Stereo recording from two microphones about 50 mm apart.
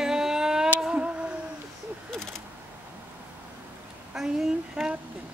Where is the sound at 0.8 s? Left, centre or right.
Centre.